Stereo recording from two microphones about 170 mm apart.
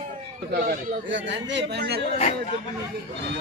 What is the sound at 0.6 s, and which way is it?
Speech, 80° right.